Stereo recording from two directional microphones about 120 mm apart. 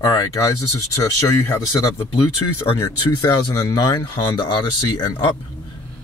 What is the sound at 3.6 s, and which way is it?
Speech, 20° left (ahead or behind).